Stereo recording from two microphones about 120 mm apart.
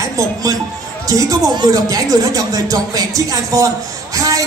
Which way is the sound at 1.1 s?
30° right (ahead or behind).